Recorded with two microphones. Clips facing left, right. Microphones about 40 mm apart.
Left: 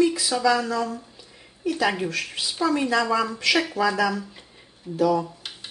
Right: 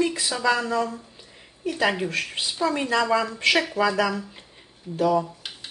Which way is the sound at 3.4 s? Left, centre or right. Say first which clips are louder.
Right 2 dB; right.